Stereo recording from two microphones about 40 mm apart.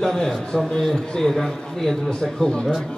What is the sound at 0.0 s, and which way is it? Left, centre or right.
A man's voice, centre.